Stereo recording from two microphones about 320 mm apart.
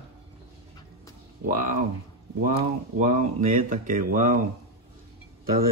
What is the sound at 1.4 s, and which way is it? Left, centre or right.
Speech, right.